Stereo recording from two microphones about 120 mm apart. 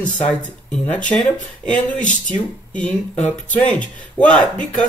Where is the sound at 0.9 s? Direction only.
10° left (ahead or behind).